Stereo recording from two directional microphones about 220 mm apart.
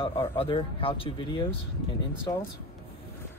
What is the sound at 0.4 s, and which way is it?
Speech, 25° left (ahead or behind).